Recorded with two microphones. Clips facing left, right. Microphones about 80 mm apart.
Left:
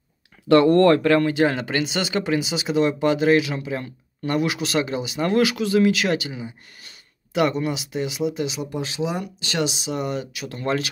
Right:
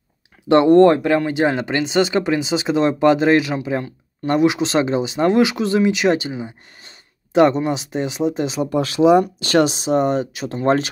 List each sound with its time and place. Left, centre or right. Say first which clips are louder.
0.5 s speech: right 3 dB; right